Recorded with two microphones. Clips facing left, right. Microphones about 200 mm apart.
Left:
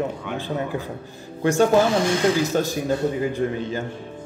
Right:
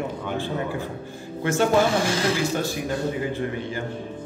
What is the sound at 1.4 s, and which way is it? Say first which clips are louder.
Speech: left 4 dB; 15° left (ahead or behind).